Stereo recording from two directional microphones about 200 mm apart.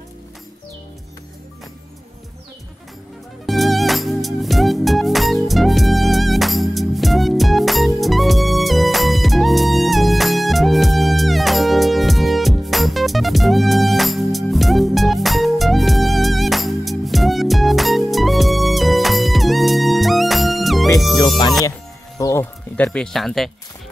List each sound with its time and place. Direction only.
3.4 s music: centre (ahead or behind)
22.2 s music: 15° left (ahead or behind)